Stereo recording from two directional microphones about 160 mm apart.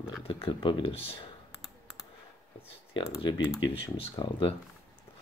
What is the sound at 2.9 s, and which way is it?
Speech, 30° left (ahead or behind).